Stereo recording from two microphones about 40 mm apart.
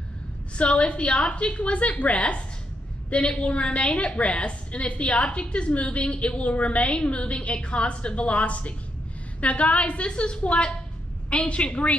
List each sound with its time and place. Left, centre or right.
0.6 s a woman's voice: left